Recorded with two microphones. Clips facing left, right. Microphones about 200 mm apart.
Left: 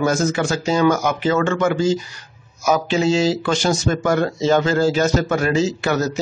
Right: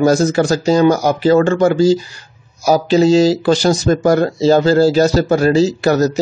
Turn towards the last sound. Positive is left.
turn(degrees=-40)  # may be behind; listen again after turning